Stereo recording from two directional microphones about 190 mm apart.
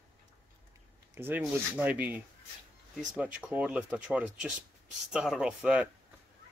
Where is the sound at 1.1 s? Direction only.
10° right (ahead or behind).